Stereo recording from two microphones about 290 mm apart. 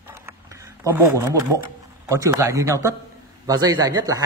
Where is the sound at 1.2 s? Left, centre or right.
Centre.